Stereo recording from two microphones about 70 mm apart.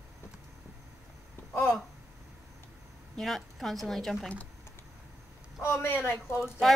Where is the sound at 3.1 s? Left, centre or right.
Centre.